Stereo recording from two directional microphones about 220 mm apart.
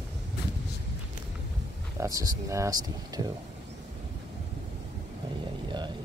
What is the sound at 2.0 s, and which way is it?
Speech, 15° right (ahead or behind).